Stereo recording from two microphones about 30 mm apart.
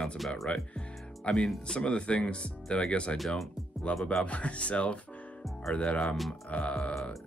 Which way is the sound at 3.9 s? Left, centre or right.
Left.